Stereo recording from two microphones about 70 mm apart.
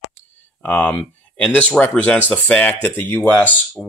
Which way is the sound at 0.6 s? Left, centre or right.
Left.